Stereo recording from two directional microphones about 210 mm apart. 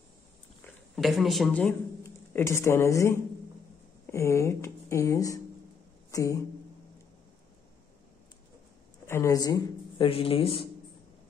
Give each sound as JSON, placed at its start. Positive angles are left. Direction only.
{"t": 0.9, "sound": "speech", "side_deg": 0}
{"t": 9.0, "sound": "speech", "side_deg": 10}